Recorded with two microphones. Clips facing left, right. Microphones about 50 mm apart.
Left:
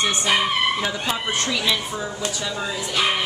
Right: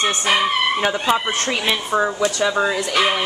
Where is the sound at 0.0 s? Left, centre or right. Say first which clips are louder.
Right 3 dB; right.